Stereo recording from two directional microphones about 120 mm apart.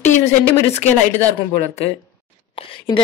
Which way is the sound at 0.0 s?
75° left (ahead or behind).